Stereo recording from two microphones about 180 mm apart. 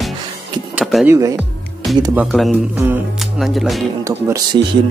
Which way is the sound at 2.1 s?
Centre (ahead or behind).